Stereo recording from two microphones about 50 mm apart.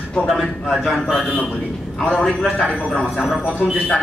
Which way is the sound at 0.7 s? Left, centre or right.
Centre.